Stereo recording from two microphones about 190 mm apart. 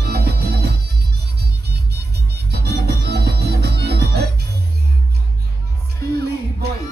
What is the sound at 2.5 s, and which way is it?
Music, 60° right (ahead or behind).